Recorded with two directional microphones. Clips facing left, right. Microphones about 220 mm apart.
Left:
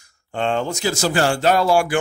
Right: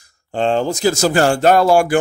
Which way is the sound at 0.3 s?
35° right (ahead or behind).